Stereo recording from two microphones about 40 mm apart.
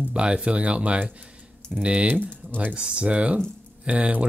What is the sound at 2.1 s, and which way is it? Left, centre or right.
Speech, right.